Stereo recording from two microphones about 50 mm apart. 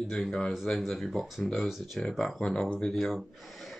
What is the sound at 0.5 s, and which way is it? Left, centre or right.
Speech, centre.